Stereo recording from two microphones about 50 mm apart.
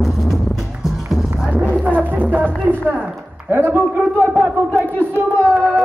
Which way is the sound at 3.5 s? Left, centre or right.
Right.